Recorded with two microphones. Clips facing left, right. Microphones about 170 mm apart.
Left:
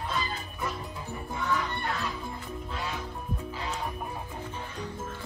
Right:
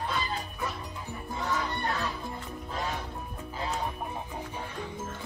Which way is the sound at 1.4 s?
35° right (ahead or behind).